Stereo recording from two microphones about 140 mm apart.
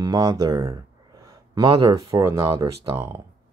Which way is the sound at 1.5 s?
30° right (ahead or behind).